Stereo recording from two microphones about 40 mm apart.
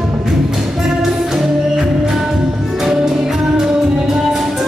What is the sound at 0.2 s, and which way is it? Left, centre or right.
Music, centre.